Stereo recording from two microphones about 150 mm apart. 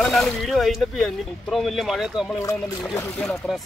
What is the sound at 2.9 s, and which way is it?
Speech, 15° left (ahead or behind).